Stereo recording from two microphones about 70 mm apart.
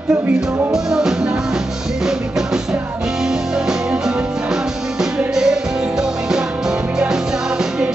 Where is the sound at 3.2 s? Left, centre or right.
Centre.